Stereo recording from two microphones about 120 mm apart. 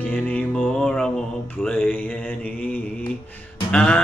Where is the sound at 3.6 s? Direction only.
10° left (ahead or behind).